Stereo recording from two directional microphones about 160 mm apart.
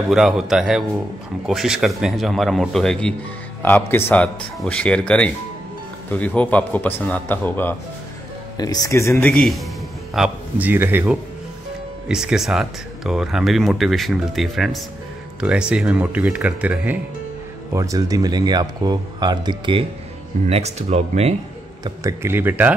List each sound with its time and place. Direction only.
0.1 s a man's voice: centre (ahead or behind)
8.5 s speech: 25° left (ahead or behind)
9.3 s speech: centre (ahead or behind)
17.7 s speech: 20° right (ahead or behind); by 21.4 s 40° right (ahead or behind)
21.8 s speech: 15° right (ahead or behind)